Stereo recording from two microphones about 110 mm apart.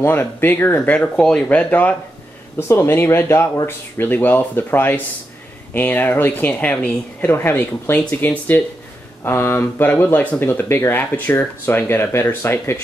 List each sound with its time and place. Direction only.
0.0 s speech: 20° left (ahead or behind)